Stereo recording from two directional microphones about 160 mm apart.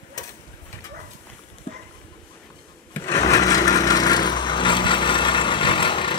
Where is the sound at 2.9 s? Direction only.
20° left (ahead or behind).